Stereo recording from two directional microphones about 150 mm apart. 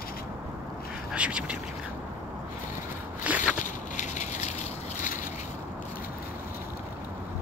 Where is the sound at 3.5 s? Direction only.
55° left (ahead or behind).